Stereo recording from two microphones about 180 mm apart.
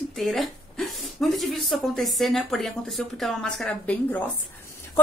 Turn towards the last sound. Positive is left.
turn(degrees=10)  # may be behind; listen again after turning